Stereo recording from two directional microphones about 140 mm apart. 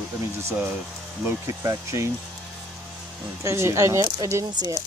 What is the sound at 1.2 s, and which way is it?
Speech, 20° right (ahead or behind).